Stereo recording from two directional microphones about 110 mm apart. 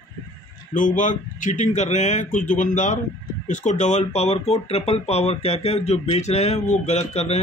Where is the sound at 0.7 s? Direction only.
90° left.